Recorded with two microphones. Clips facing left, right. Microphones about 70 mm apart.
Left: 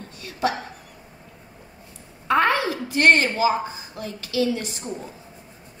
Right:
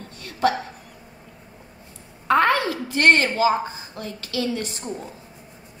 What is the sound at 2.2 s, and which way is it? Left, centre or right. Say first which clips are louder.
A woman's voice: right 1 dB; right.